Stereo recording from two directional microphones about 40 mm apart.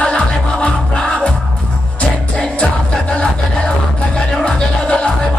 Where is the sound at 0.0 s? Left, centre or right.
Left.